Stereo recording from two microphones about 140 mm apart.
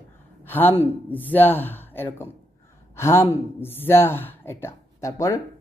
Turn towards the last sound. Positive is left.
turn(degrees=25)  # may be behind; listen again after turning